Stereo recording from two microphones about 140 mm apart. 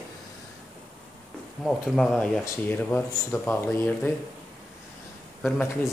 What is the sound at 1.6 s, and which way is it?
Speech, centre (ahead or behind).